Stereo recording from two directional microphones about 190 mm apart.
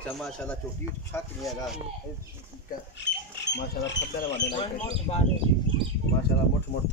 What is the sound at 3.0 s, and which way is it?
Speech, 65° left (ahead or behind).